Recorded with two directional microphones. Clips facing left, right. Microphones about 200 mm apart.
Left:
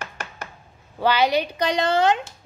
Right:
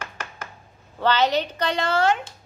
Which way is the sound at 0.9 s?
10° left (ahead or behind).